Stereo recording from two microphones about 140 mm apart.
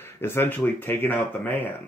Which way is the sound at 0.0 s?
15° left (ahead or behind).